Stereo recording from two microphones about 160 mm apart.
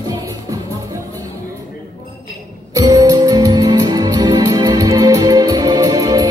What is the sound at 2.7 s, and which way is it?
Music, 25° right (ahead or behind).